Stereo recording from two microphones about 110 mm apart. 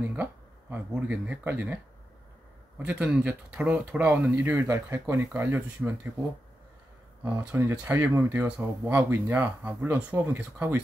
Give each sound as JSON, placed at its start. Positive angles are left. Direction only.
{"t": 0.1, "sound": "speech", "side_deg": -15}
{"t": 2.8, "sound": "speech", "side_deg": -10}
{"t": 4.6, "sound": "speech", "side_deg": -30}
{"t": 7.2, "sound": "speech", "side_deg": -20}